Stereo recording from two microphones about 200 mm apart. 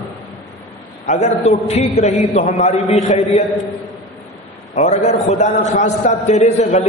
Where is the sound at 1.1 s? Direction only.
35° left (ahead or behind).